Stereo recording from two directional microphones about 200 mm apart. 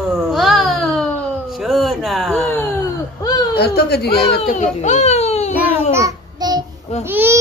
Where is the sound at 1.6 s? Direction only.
Centre (ahead or behind).